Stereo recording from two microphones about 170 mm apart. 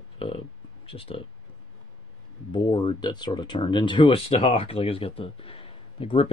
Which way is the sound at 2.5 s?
25° left (ahead or behind).